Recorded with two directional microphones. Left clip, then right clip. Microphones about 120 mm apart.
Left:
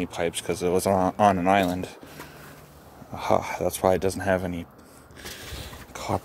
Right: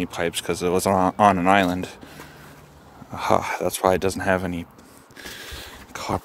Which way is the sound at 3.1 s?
50° right (ahead or behind).